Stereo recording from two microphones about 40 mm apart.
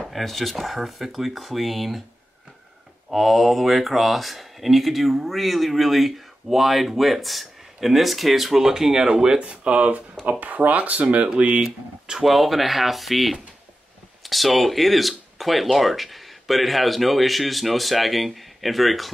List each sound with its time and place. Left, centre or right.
0.1 s speech: centre
3.1 s speech: centre
9.4 s speech: right
10.4 s speech: right
11.6 s speech: centre